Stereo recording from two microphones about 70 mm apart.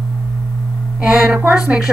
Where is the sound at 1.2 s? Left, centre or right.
Right.